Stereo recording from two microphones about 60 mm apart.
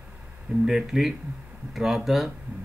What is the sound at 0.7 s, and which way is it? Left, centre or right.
Speech, centre.